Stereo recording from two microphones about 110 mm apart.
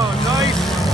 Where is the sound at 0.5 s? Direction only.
Centre (ahead or behind).